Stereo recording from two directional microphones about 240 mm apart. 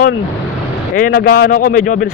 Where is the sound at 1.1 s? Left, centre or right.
Left.